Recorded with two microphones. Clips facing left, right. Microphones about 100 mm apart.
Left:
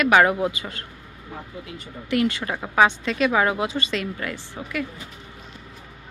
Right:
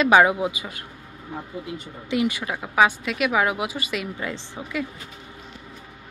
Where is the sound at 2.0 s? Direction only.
15° right (ahead or behind).